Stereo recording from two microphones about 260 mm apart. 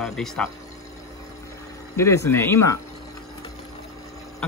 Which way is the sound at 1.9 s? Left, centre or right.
Centre.